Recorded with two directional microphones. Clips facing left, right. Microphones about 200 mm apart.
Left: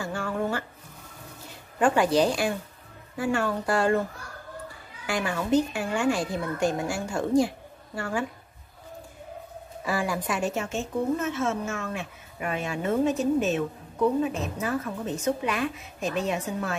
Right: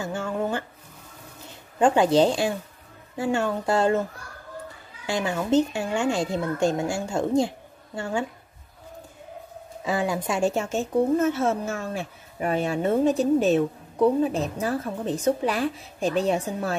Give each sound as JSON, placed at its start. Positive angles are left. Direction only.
{"t": 0.0, "sound": "speech", "side_deg": -20}
{"t": 1.8, "sound": "speech", "side_deg": -25}
{"t": 5.0, "sound": "speech", "side_deg": -25}
{"t": 9.8, "sound": "a woman's voice", "side_deg": -20}